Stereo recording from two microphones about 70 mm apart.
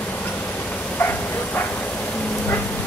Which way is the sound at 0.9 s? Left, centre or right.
Left.